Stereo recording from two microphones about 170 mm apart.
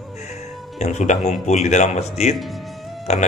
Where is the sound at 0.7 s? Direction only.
40° left (ahead or behind).